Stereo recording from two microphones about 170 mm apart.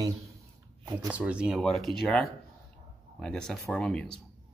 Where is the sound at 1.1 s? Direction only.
5° right (ahead or behind).